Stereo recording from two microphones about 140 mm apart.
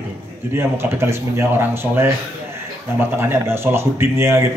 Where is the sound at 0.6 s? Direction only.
20° right (ahead or behind).